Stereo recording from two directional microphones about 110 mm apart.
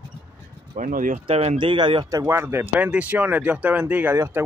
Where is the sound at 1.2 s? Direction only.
70° right (ahead or behind).